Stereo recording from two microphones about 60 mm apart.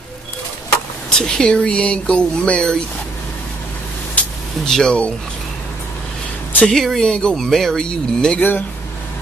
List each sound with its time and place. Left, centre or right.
1.1 s speech: centre
4.2 s vehicle: left
4.6 s speech: centre
6.7 s speech: centre
7.1 s speech: centre
7.3 s speech: centre
8.4 s speech: left